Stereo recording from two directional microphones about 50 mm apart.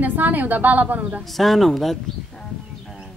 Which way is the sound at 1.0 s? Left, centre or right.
Right.